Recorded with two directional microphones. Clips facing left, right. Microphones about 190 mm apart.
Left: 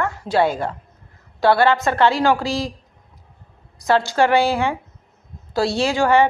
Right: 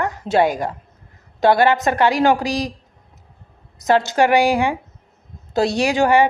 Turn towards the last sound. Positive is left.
turn(degrees=-15)  # may be behind; listen again after turning